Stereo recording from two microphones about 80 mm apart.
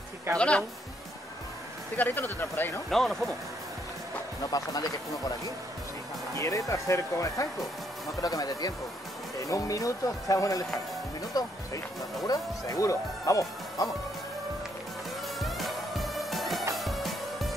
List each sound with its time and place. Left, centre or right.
0.4 s a woman's voice: centre
2.0 s speech: left
2.9 s speech: centre
4.5 s speech: left
6.3 s speech: left
15.4 s music: centre